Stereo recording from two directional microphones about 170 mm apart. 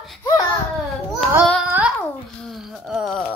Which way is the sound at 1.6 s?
10° right (ahead or behind).